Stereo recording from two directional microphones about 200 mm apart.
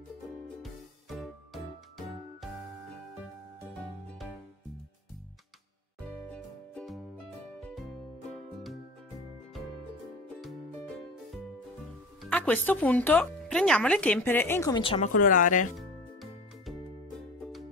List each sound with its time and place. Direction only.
0.6 s music: centre (ahead or behind)
6.3 s music: 5° left (ahead or behind)
10.4 s music: centre (ahead or behind)
12.2 s speech: 5° left (ahead or behind)
14.8 s speech: 30° left (ahead or behind)
15.1 s speech: 40° left (ahead or behind)
15.8 s music: centre (ahead or behind)